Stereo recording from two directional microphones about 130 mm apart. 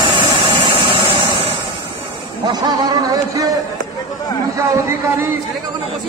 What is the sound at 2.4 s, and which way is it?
Speech, 30° right (ahead or behind).